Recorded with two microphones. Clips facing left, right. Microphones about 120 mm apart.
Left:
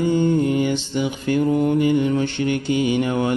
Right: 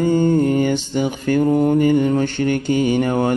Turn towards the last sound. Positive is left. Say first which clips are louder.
# right 3 dB
turn(degrees=-45)  # may be behind; listen again after turning